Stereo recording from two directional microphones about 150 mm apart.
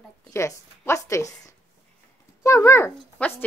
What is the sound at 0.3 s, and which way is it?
A woman's voice, 20° left (ahead or behind).